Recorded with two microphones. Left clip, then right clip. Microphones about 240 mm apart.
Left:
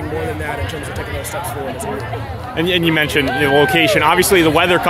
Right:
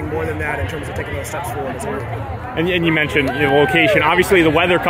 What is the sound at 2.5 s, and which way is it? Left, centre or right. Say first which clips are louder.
Speech: left 1 dB; centre.